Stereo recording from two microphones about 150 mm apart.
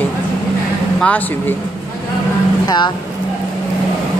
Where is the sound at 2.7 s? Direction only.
30° left (ahead or behind).